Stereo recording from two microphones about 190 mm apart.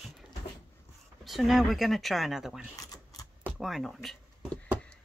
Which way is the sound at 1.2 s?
Centre (ahead or behind).